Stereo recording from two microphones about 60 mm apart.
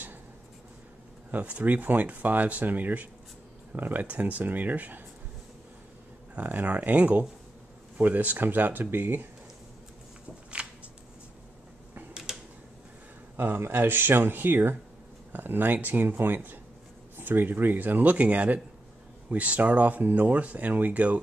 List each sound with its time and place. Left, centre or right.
1.3 s speech: right
6.3 s speech: right
10.6 s shuffling cards: centre
12.1 s a sound: centre
13.4 s speech: right